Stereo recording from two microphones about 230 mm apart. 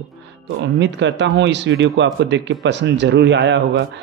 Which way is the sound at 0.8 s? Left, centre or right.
Right.